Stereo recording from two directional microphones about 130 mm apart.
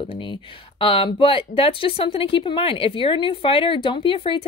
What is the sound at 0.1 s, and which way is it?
Speech, 40° left (ahead or behind).